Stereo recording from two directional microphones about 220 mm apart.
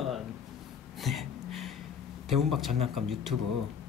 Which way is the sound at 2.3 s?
Centre (ahead or behind).